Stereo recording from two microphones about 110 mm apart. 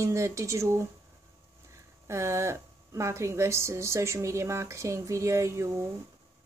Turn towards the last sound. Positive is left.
turn(degrees=-25)  # may be behind; listen again after turning